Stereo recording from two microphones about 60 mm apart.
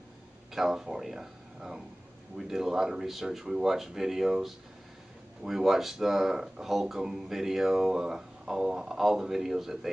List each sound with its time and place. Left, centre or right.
0.6 s speech: centre